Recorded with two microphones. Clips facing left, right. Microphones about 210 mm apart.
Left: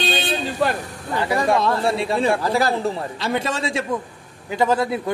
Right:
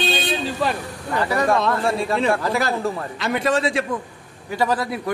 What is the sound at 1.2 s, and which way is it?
A man's voice, 25° left (ahead or behind).